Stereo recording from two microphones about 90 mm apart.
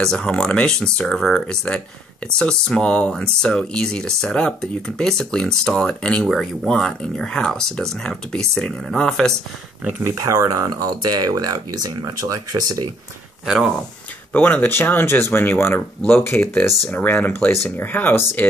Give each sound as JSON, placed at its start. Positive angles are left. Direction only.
{"t": 0.0, "sound": "speech", "side_deg": 10}
{"t": 10.0, "sound": "speech", "side_deg": -35}
{"t": 14.3, "sound": "speech", "side_deg": 20}